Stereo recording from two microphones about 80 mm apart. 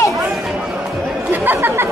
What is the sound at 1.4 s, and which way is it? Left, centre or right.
Chatter, right.